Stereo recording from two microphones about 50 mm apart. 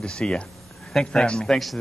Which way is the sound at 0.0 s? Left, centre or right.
Centre.